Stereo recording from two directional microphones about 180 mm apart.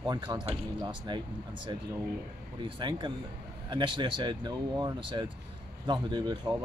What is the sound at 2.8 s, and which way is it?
Speech, 25° right (ahead or behind).